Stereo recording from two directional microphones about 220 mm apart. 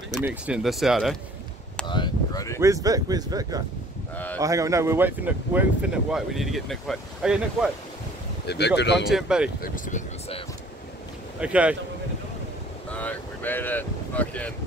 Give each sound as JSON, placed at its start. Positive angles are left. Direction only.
{"t": 0.2, "sound": "speech", "side_deg": -5}
{"t": 1.9, "sound": "speech", "side_deg": 20}
{"t": 2.6, "sound": "speech", "side_deg": -15}
{"t": 8.5, "sound": "speech", "side_deg": 50}
{"t": 9.1, "sound": "speech", "side_deg": -5}
{"t": 9.6, "sound": "speech", "side_deg": 35}
{"t": 11.3, "sound": "speech", "side_deg": -5}
{"t": 12.9, "sound": "boat", "side_deg": 5}